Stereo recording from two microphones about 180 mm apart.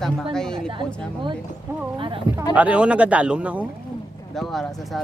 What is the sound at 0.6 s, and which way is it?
Speech, 25° right (ahead or behind).